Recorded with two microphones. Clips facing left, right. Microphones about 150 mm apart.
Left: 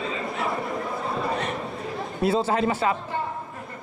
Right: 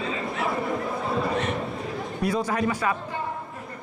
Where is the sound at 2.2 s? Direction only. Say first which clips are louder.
Left 3 dB; 30° left (ahead or behind).